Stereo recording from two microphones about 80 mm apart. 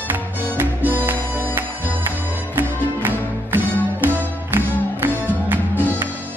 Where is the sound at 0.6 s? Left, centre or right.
Right.